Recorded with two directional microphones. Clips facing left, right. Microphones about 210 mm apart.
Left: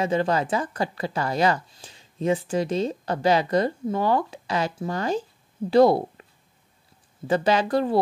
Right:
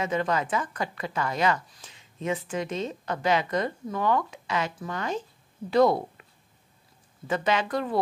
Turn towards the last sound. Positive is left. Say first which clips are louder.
# left 5 dB
turn(degrees=35)  # may be behind; listen again after turning